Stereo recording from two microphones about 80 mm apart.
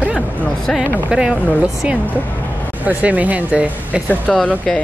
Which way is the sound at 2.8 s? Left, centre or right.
Centre.